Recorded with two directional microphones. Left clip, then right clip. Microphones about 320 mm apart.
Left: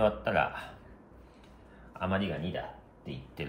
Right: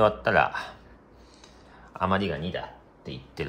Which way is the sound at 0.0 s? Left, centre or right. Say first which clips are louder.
Right 6 dB; right.